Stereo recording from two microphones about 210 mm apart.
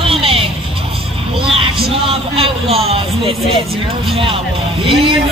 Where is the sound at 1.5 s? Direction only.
25° right (ahead or behind).